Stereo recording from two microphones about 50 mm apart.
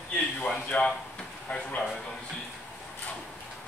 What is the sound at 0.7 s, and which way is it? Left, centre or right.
Speech, left.